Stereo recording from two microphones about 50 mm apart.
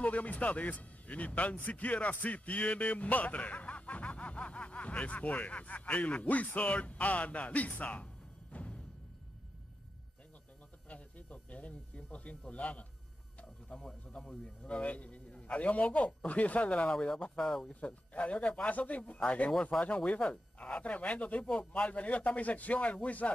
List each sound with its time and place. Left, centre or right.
0.0 s speech: left
10.9 s a man's voice: left; by 17.6 s centre
17.7 s speech: left